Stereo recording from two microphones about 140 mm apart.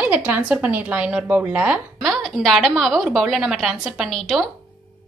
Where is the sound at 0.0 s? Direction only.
10° right (ahead or behind).